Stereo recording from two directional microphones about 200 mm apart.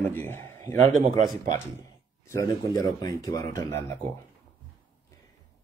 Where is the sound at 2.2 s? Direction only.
15° left (ahead or behind).